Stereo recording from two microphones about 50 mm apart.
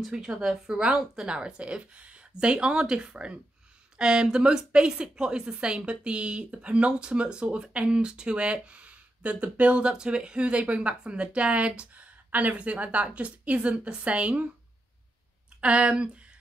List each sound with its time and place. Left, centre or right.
0.0 s a woman's voice: centre; by 14.5 s right
15.6 s a woman's voice: right